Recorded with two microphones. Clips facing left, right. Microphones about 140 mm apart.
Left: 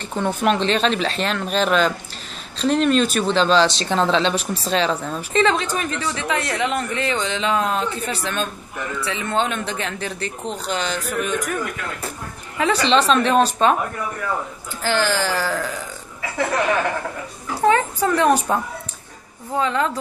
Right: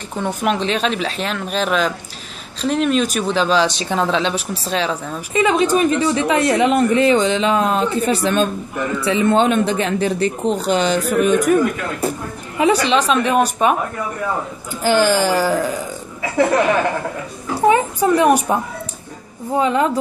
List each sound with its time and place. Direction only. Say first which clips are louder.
0.3 s speech: even; 5° right (ahead or behind)
14.8 s speech: right 6 dB; 15° right (ahead or behind)
17.6 s speech: right 3 dB; 15° right (ahead or behind)